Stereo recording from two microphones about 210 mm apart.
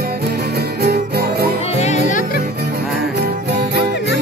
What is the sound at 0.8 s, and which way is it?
Music, 50° right (ahead or behind).